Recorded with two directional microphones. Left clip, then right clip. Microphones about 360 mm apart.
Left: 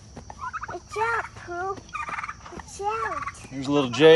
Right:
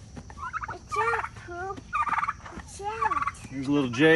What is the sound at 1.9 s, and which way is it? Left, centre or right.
Fowl, centre.